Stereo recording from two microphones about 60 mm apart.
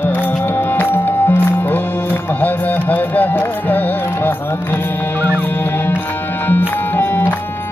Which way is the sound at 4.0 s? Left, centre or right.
Left.